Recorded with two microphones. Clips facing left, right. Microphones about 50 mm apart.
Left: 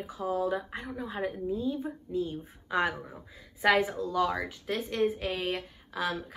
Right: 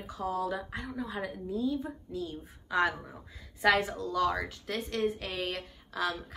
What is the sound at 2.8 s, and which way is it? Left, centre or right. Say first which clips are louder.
Speech: right 2 dB; centre.